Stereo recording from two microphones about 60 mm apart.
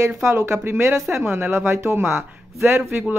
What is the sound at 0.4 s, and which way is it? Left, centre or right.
Speech, right.